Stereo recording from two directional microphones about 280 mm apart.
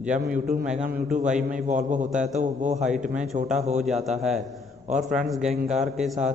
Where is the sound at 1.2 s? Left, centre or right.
Centre.